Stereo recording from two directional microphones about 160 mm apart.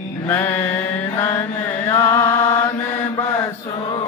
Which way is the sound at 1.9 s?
20° left (ahead or behind).